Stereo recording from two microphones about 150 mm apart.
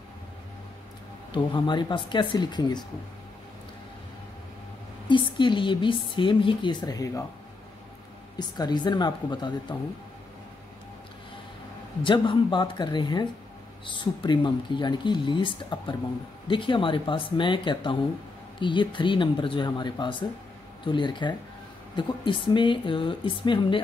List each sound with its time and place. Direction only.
1.3 s a woman's voice: 30° left (ahead or behind)
5.0 s a woman's voice: 35° left (ahead or behind)
8.4 s speech: 30° left (ahead or behind)
12.0 s a woman's voice: 35° left (ahead or behind)